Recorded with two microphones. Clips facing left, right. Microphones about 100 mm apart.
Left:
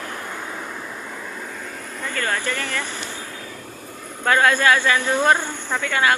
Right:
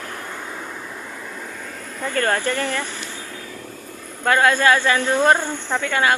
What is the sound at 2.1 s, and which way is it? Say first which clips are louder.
Speech: right 4 dB; 40° right (ahead or behind).